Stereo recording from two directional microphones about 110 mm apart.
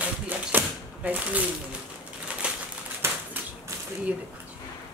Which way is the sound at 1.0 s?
15° right (ahead or behind).